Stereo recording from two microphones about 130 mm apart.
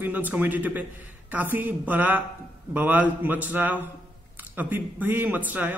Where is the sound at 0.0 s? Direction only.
15° right (ahead or behind).